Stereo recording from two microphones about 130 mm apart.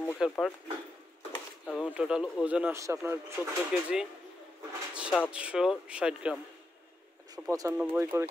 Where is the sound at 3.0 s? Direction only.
20° right (ahead or behind).